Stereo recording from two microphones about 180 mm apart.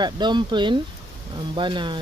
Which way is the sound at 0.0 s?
25° right (ahead or behind).